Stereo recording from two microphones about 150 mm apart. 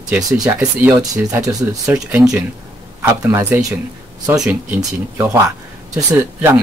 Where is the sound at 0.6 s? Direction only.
10° right (ahead or behind).